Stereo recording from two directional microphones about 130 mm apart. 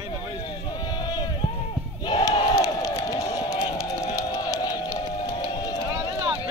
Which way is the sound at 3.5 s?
25° left (ahead or behind).